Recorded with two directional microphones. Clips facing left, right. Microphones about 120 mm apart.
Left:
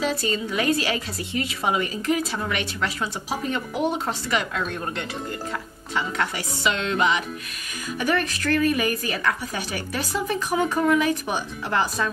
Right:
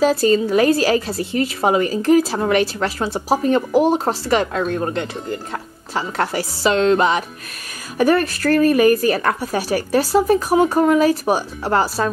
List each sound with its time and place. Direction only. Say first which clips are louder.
0.0 s speech: right 10 dB; 35° right (ahead or behind)